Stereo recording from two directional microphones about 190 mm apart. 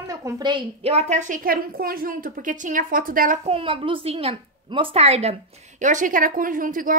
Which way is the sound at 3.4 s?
30° right (ahead or behind).